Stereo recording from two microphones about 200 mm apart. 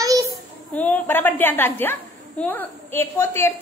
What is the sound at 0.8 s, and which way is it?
A woman's voice, 10° left (ahead or behind).